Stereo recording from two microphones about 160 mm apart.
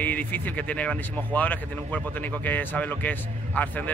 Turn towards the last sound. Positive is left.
turn(degrees=10)  # may be behind; listen again after turning